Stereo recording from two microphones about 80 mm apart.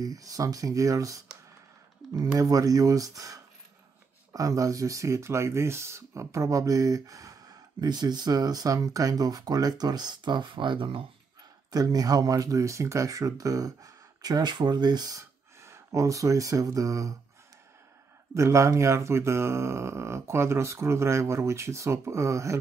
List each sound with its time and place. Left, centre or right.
0.0 s speech: right
11.7 s speech: right
15.1 s speech: right
18.3 s speech: right